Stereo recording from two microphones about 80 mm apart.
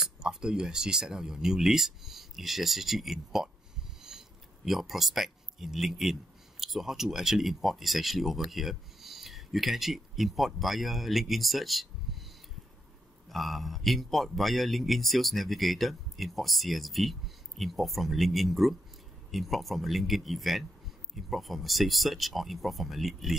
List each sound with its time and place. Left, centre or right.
0.0 s a man's voice: centre
4.6 s a man's voice: centre
13.3 s a man's voice: centre